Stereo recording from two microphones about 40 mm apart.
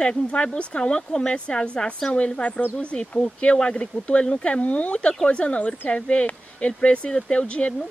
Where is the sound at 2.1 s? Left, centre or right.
Left.